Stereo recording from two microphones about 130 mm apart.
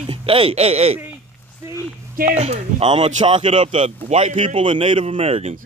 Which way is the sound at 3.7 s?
55° right (ahead or behind).